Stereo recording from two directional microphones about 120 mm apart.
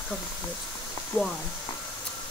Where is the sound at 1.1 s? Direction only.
15° left (ahead or behind).